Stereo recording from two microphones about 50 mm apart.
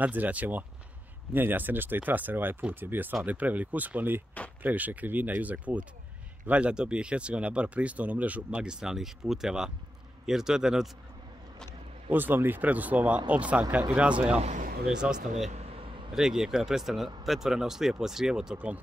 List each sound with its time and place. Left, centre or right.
0.0 s speech: right; by 10.9 s centre
12.1 s speech: right; by 18.6 s centre